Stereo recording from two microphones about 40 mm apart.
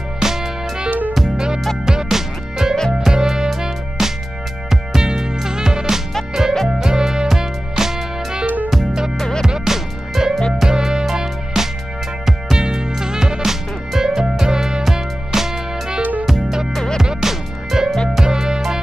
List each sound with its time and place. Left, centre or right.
0.2 s music: centre
0.8 s music: right
1.3 s music: centre
9.5 s music: centre
16.0 s music: right
16.3 s music: centre
16.7 s music: centre
17.0 s music: centre